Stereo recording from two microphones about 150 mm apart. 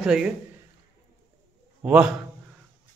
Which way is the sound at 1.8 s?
10° right (ahead or behind).